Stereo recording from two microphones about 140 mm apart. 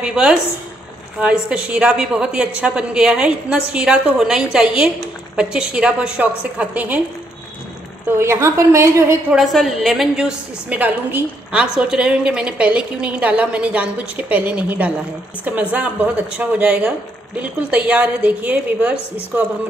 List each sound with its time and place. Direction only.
0.0 s a woman's voice: 5° right (ahead or behind)
8.1 s a woman's voice: 20° right (ahead or behind)
9.3 s a woman's voice: centre (ahead or behind)